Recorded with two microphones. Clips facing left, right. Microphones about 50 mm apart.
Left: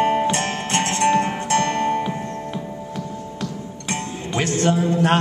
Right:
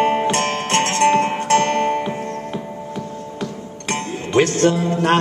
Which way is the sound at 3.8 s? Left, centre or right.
Right.